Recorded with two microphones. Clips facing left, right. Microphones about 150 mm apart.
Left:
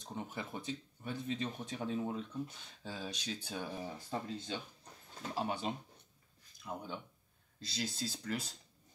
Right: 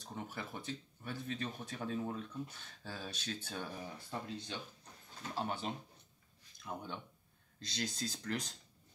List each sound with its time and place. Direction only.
0.0 s speech: 20° left (ahead or behind)